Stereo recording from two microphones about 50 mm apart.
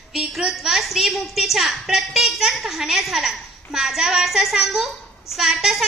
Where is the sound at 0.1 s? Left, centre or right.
Centre.